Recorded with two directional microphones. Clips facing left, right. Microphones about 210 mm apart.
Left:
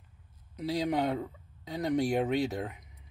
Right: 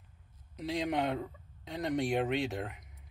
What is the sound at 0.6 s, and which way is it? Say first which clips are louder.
Speech: left 3 dB; centre (ahead or behind).